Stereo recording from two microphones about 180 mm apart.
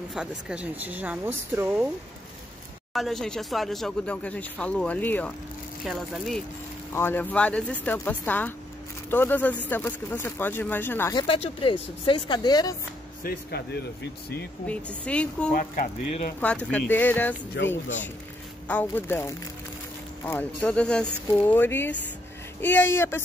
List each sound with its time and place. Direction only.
0.1 s speech: 5° right (ahead or behind)
2.9 s speech: centre (ahead or behind)
6.9 s speech: 10° left (ahead or behind)
11.1 s speech: 30° left (ahead or behind)
13.2 s speech: 55° left (ahead or behind)
15.0 s speech: 5° left (ahead or behind)
15.5 s speech: 50° left (ahead or behind)
16.7 s speech: 10° left (ahead or behind)
17.6 s speech: 90° left
18.7 s speech: 10° left (ahead or behind)